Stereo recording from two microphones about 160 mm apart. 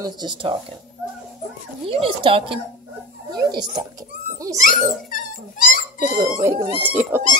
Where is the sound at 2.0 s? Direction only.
35° right (ahead or behind).